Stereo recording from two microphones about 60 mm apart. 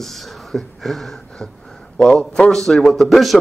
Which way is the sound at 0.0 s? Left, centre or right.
Centre.